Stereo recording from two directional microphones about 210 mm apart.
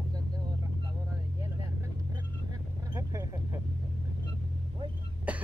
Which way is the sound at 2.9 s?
15° right (ahead or behind).